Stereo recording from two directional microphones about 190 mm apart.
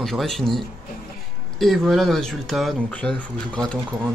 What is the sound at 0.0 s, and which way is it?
Speech, centre (ahead or behind).